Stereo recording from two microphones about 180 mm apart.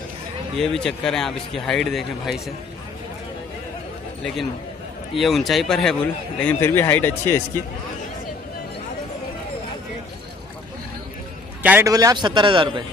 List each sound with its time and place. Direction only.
0.6 s speech: centre (ahead or behind)
5.2 s speech: centre (ahead or behind)
11.6 s a man's voice: 15° right (ahead or behind)